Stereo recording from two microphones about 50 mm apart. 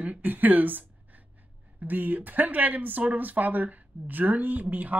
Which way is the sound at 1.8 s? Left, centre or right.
Right.